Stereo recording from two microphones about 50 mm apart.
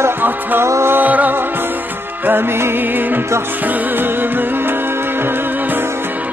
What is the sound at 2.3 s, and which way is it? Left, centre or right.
Music, right.